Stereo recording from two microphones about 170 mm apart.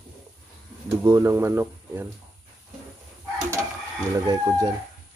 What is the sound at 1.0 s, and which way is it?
Speech, 20° right (ahead or behind).